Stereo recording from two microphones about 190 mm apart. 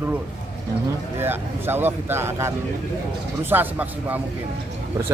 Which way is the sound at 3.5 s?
10° right (ahead or behind).